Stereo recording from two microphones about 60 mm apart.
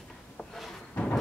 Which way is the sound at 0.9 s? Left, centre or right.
Left.